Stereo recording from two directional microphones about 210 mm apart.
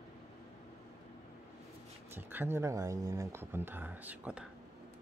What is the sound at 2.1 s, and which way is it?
Speech, 10° right (ahead or behind).